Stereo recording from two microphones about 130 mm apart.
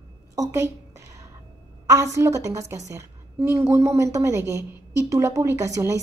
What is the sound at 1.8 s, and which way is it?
A woman's voice, 25° right (ahead or behind).